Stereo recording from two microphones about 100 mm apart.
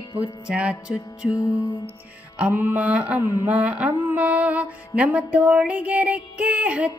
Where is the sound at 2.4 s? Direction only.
15° right (ahead or behind).